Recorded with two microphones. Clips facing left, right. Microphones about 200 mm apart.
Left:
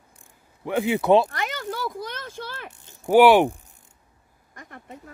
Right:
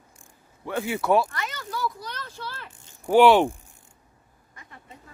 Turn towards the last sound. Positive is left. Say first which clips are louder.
# left 6 dB
turn(degrees=50)  # may be behind; listen again after turning